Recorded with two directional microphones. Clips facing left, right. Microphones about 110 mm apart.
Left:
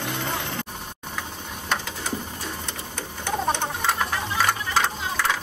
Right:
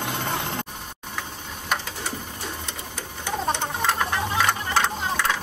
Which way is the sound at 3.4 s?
Centre (ahead or behind).